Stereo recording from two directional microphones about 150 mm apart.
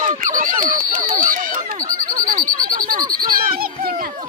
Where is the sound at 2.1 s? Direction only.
65° right (ahead or behind).